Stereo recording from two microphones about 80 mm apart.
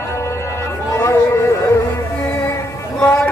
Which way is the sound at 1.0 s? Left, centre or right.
Left.